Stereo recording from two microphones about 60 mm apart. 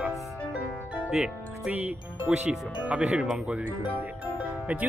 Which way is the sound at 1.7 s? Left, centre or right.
Right.